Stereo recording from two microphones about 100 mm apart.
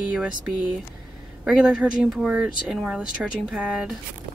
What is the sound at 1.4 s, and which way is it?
Speech, 5° right (ahead or behind).